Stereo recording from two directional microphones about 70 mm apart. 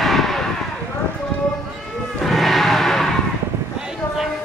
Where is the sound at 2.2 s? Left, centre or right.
Centre.